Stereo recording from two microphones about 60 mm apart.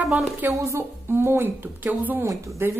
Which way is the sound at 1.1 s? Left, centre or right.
Right.